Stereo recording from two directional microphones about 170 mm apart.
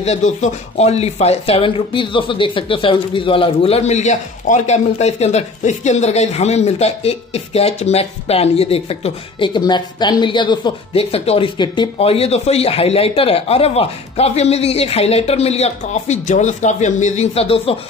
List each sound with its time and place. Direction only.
0.0 s speech: 40° left (ahead or behind)